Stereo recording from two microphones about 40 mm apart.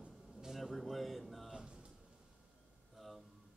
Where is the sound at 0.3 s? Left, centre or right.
Centre.